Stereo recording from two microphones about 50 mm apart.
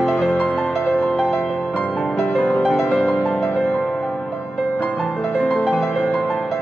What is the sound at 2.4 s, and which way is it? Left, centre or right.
Music, centre.